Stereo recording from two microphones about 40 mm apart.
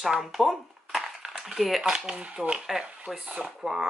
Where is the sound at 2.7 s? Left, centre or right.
Centre.